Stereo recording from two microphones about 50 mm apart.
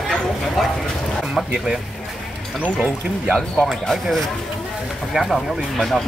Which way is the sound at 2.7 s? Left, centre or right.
Right.